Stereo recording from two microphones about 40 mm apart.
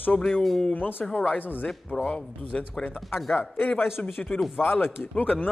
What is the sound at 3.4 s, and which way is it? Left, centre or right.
Speech, left.